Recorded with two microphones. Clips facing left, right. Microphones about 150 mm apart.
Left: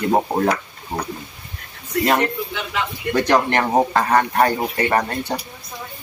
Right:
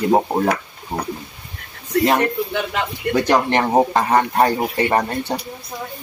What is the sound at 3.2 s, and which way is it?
Speech, 10° right (ahead or behind).